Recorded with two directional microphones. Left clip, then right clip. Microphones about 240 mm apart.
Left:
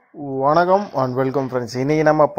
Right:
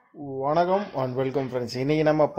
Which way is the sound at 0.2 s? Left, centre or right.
Left.